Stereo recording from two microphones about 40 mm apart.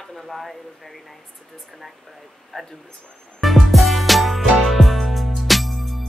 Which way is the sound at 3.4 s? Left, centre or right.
Centre.